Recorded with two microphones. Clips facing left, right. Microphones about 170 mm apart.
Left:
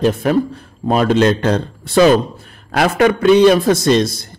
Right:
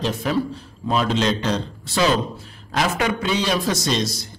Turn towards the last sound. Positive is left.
turn(degrees=55)  # may be behind; listen again after turning